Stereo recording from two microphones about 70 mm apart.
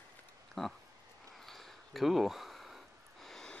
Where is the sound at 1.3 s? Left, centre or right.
Centre.